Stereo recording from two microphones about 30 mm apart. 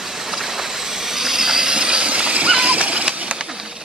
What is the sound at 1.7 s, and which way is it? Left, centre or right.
Train, right.